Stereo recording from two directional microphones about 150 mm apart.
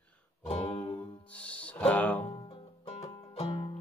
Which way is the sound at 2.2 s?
35° left (ahead or behind).